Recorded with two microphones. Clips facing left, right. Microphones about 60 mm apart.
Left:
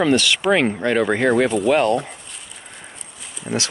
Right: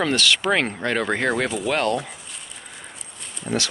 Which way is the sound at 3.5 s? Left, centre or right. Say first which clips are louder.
Left 1 dB; centre.